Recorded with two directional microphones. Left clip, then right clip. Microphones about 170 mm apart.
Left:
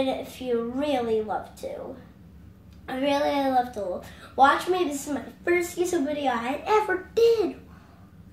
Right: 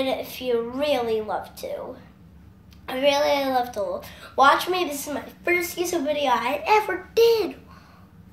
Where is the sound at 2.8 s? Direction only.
15° left (ahead or behind).